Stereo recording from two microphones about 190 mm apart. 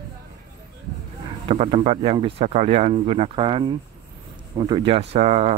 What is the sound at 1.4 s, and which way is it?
Speech, 30° right (ahead or behind).